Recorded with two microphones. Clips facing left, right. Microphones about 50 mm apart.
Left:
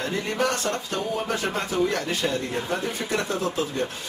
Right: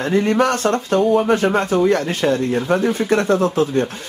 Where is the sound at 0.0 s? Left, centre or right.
Right.